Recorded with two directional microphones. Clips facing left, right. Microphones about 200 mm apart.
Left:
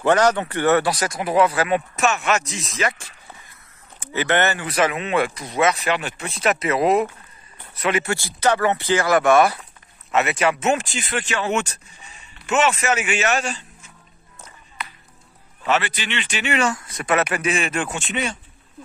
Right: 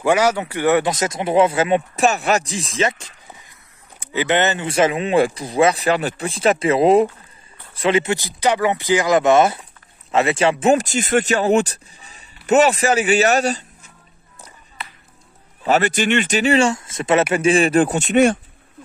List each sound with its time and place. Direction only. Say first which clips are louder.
0.0 s speech: even; 10° right (ahead or behind); by 13.9 s 40° right (ahead or behind)
15.6 s speech: right 6 dB; 40° right (ahead or behind)